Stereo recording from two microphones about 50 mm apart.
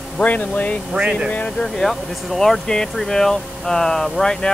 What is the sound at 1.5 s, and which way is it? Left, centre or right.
Speech, centre.